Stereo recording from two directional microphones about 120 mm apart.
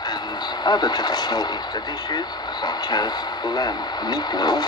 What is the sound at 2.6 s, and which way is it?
Speech, 35° left (ahead or behind).